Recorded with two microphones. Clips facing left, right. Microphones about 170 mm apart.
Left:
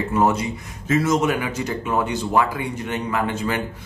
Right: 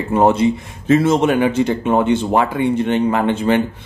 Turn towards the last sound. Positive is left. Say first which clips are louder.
# right 7 dB
turn(degrees=-25)  # may be behind; listen again after turning